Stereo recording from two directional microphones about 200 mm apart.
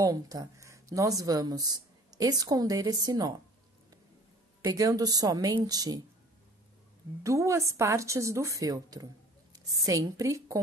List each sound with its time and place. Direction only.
0.0 s a woman's voice: 20° right (ahead or behind)
4.6 s a woman's voice: 20° right (ahead or behind)
7.2 s a woman's voice: 15° right (ahead or behind)